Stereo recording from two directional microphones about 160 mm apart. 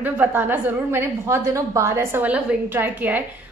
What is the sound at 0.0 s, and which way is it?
A woman's voice, 10° right (ahead or behind).